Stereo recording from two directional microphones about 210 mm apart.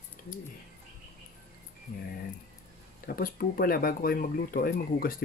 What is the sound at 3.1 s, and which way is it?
Speech, 45° left (ahead or behind).